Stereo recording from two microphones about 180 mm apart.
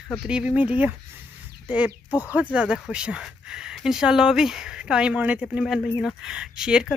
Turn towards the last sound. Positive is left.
turn(degrees=-5)  # may be behind; listen again after turning